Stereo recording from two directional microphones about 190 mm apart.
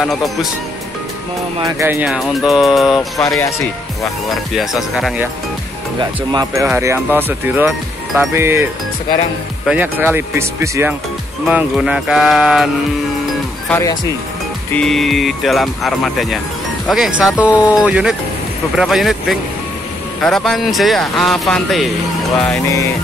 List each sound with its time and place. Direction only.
0.0 s speech: centre (ahead or behind)
1.6 s speech: 15° right (ahead or behind); by 3.3 s centre (ahead or behind)
3.3 s speech: 15° left (ahead or behind)
4.6 s speech: centre (ahead or behind)
5.9 s speech: 20° right (ahead or behind)
9.7 s speech: 10° right (ahead or behind)
13.7 s speech: 15° left (ahead or behind)
14.7 s speech: 5° left (ahead or behind)